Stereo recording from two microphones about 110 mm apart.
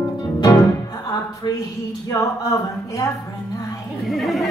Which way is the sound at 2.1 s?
35° left (ahead or behind).